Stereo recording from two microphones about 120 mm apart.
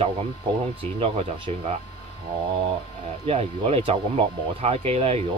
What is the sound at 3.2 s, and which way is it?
Speech, 55° right (ahead or behind).